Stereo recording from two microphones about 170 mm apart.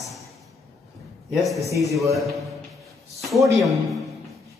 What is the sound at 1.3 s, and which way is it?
Speech, centre (ahead or behind).